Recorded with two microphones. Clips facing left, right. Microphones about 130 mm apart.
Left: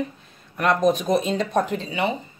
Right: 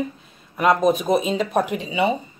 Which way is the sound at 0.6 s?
5° right (ahead or behind).